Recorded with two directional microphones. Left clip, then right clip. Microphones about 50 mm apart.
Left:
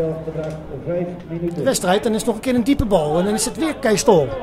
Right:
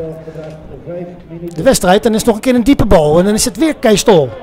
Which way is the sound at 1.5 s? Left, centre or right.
Right.